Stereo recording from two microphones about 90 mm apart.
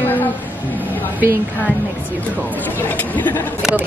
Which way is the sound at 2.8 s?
20° left (ahead or behind).